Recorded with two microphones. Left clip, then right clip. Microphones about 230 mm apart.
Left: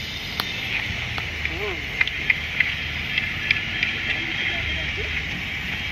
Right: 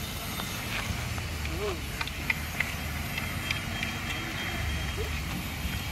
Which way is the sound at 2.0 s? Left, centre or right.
Centre.